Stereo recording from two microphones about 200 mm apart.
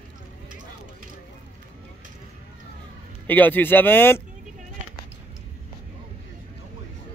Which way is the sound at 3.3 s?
10° left (ahead or behind).